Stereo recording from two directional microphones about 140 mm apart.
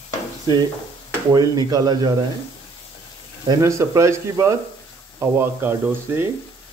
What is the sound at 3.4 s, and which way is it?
Speech, 20° right (ahead or behind).